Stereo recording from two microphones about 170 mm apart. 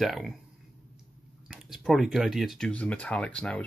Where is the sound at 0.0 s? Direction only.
Centre (ahead or behind).